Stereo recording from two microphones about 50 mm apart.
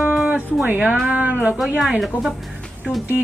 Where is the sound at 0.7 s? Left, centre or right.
Right.